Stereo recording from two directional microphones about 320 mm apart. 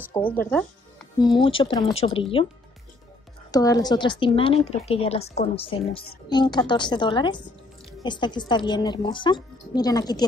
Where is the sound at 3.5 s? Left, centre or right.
Centre.